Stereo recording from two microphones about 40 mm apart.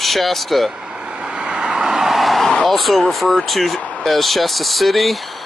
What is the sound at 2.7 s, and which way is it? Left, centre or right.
Speech, centre.